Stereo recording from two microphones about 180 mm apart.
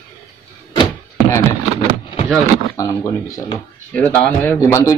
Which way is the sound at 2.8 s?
20° left (ahead or behind).